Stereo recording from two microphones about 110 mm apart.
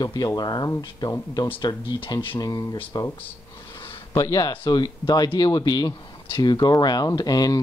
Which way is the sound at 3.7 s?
55° left (ahead or behind).